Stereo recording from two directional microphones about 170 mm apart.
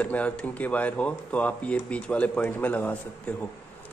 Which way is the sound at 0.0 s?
10° left (ahead or behind).